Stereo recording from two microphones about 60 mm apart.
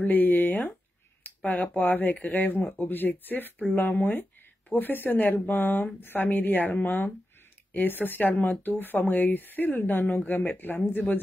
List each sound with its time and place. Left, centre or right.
0.0 s speech: left
1.2 s a sound: left
1.8 s speech: left